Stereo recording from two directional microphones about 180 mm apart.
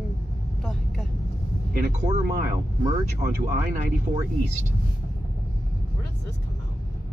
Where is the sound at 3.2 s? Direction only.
35° right (ahead or behind).